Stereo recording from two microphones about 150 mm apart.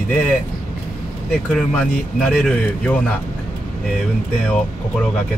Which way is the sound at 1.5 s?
5° left (ahead or behind).